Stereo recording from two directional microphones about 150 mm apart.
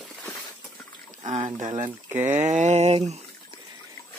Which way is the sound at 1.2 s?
45° right (ahead or behind).